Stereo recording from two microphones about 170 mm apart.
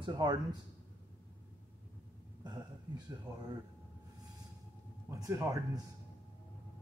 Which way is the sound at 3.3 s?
20° right (ahead or behind).